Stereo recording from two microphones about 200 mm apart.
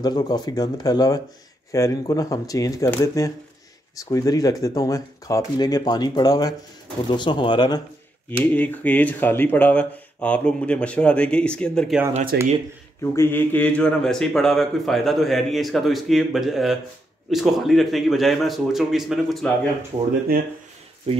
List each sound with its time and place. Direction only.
0.0 s speech: 20° left (ahead or behind)
8.5 s speech: 10° left (ahead or behind)
12.1 s speech: 40° right (ahead or behind)
13.0 s speech: 15° left (ahead or behind)